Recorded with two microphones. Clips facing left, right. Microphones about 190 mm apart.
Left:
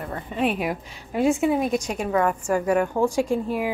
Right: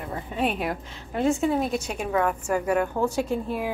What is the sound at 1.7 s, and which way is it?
A woman's voice, 5° right (ahead or behind).